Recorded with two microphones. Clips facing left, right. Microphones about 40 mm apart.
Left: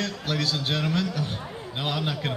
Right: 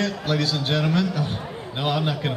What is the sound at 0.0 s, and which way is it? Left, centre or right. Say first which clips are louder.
A man's voice: right 4 dB; centre.